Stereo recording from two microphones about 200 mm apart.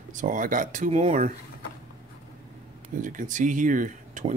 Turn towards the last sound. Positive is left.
turn(degrees=-40)  # may be behind; listen again after turning